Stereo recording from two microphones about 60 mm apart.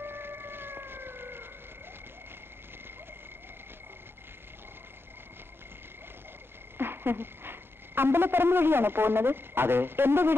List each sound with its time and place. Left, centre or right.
0.0 s emergency vehicle: right
6.8 s speech: right